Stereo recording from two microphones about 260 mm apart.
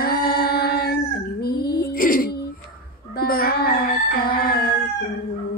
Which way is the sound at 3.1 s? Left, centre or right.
Left.